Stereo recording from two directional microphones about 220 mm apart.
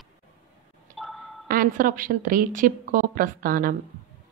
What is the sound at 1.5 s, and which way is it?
Speech, 40° right (ahead or behind).